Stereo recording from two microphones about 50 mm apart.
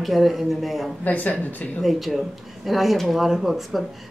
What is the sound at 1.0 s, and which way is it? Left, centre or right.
Speech, left.